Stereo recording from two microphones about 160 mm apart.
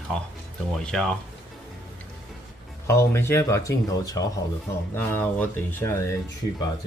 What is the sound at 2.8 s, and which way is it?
Speech, 15° left (ahead or behind).